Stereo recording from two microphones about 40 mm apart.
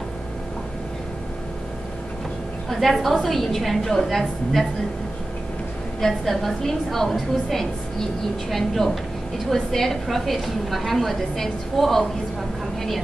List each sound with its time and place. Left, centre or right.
2.7 s a woman's voice: centre
5.9 s a woman's voice: centre